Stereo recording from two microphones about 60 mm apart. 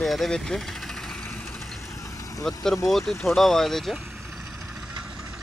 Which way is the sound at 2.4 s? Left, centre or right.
Centre.